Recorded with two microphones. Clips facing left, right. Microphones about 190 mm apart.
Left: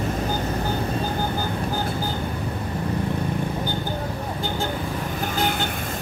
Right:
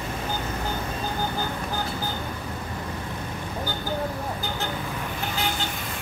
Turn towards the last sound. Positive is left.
turn(degrees=55)  # may be behind; listen again after turning